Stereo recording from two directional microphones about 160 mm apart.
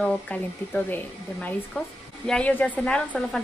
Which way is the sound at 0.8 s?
10° left (ahead or behind).